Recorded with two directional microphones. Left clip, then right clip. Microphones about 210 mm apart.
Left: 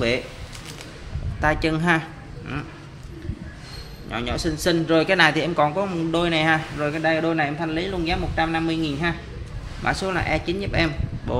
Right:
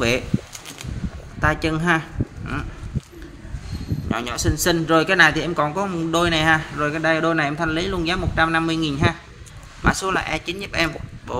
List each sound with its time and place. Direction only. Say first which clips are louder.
1.4 s a man's voice: right 1 dB; 5° right (ahead or behind)
4.1 s a man's voice: right 1 dB; 15° right (ahead or behind)